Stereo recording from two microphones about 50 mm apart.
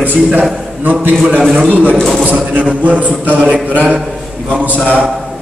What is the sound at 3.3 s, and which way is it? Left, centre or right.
Speech, centre.